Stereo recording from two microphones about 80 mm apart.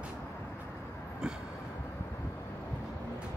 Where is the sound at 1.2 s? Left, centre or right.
Centre.